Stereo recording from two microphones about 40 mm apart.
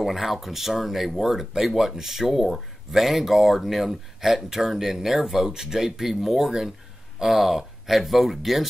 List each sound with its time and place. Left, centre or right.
0.0 s speech: centre